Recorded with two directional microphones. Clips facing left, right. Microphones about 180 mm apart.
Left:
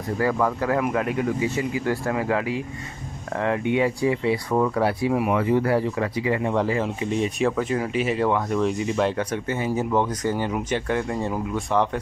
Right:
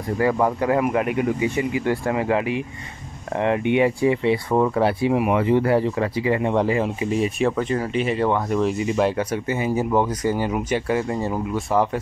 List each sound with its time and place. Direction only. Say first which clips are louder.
0.2 s speech: right 3 dB; 20° right (ahead or behind); by 12.0 s 5° right (ahead or behind)